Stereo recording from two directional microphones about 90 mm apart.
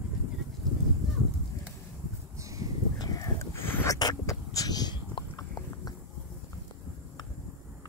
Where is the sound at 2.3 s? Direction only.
35° right (ahead or behind).